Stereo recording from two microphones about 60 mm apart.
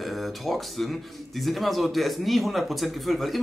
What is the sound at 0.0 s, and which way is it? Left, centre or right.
Speech, centre.